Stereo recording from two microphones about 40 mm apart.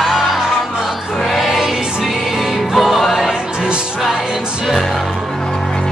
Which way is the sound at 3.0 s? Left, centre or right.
Centre.